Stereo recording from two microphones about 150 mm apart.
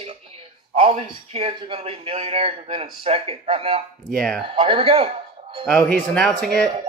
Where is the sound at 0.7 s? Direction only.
40° right (ahead or behind).